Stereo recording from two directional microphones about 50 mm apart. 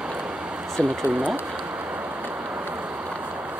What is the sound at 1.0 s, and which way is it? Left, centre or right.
Speech, right.